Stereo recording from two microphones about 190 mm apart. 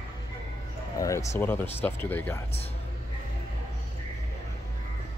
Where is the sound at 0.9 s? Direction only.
15° left (ahead or behind).